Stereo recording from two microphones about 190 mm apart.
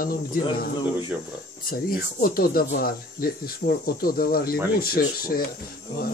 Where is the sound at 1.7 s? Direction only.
50° left (ahead or behind).